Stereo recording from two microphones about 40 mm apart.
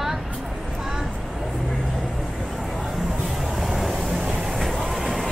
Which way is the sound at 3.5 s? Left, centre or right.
Centre.